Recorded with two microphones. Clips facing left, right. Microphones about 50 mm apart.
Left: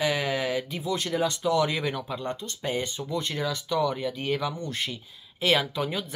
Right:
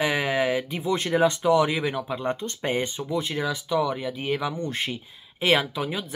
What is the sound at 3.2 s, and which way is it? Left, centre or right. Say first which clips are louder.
Speech: right 2 dB; centre.